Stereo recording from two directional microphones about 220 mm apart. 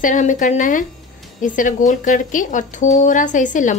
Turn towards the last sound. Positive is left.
turn(degrees=35)  # may be behind; listen again after turning